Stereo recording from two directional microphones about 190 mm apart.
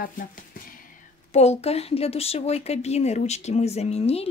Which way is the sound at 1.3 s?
35° left (ahead or behind).